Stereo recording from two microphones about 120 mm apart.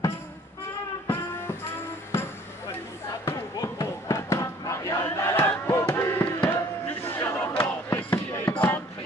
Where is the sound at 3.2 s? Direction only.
30° left (ahead or behind).